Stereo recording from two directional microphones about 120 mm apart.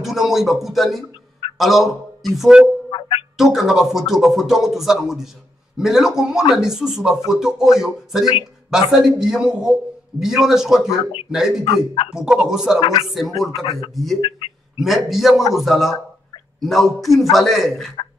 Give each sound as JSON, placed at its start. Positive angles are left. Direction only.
{"t": 0.0, "sound": "a man's voice", "side_deg": 0}
{"t": 2.9, "sound": "a sound", "side_deg": 45}
{"t": 3.5, "sound": "a man's voice", "side_deg": -5}
{"t": 11.6, "sound": "speech", "side_deg": 50}
{"t": 12.1, "sound": "a man's voice", "side_deg": -5}
{"t": 13.7, "sound": "speech", "side_deg": 50}
{"t": 13.9, "sound": "a man's voice", "side_deg": 0}